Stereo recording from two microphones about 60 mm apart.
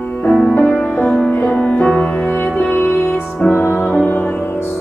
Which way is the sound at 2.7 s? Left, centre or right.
Left.